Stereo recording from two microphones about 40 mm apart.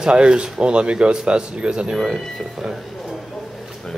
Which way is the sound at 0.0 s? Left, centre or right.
Right.